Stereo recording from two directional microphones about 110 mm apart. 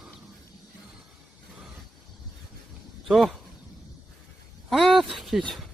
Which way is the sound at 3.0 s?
Centre (ahead or behind).